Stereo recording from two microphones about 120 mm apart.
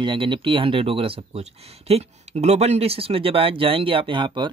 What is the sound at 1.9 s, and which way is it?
Speech, 65° right (ahead or behind).